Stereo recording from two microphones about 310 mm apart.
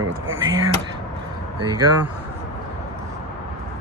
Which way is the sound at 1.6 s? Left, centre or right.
Right.